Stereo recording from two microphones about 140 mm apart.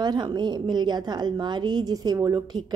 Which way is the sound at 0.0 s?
30° right (ahead or behind).